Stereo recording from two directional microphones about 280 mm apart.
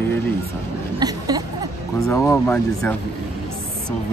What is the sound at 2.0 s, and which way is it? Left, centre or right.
Speech, centre.